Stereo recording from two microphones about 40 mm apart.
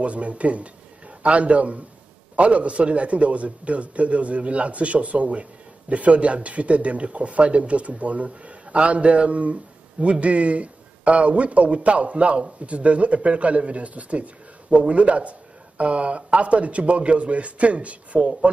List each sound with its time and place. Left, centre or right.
0.0 s a man's voice: right